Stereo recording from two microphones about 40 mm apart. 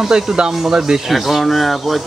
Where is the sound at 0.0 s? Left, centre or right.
Centre.